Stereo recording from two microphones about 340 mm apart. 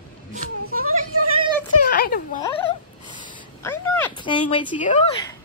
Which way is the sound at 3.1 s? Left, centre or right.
Centre.